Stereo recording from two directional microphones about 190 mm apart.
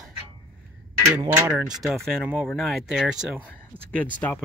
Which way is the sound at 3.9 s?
10° left (ahead or behind).